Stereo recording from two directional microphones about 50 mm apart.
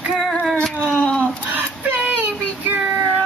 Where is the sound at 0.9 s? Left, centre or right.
Centre.